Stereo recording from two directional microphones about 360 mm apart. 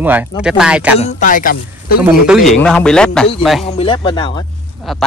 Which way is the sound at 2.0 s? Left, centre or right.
Centre.